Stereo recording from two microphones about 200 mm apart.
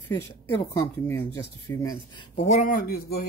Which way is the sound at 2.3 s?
35° left (ahead or behind).